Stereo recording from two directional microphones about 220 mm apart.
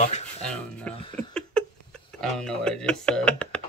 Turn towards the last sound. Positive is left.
turn(degrees=5)  # may be behind; listen again after turning